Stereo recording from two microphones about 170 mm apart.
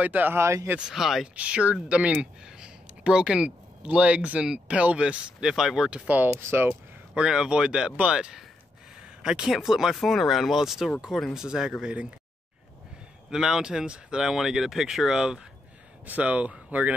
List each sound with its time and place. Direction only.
0.0 s speech: 10° right (ahead or behind)
0.7 s speech: 5° right (ahead or behind)
13.3 s speech: 5° right (ahead or behind)